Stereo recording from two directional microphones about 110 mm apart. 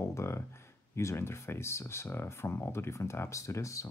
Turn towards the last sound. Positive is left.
turn(degrees=30)  # may be behind; listen again after turning